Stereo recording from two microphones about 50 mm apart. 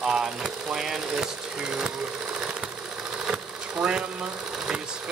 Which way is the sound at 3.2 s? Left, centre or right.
Centre.